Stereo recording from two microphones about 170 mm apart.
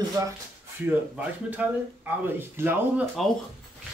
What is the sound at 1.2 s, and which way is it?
Speech, 10° right (ahead or behind).